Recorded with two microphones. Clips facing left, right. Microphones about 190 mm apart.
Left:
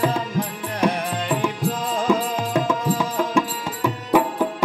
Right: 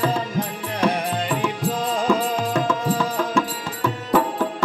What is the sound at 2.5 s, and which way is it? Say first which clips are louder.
Music: left 3 dB; 15° left (ahead or behind).